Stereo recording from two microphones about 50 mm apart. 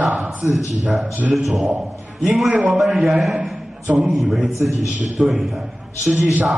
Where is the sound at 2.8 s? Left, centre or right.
Centre.